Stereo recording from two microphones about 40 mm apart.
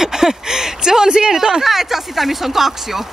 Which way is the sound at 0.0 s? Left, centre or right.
Centre.